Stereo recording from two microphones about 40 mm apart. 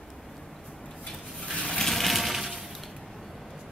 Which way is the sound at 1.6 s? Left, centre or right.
Centre.